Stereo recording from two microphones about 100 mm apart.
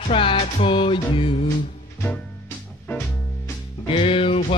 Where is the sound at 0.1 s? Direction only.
65° left (ahead or behind).